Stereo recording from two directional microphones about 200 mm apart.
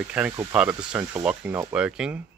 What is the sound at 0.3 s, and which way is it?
Speech, 20° right (ahead or behind).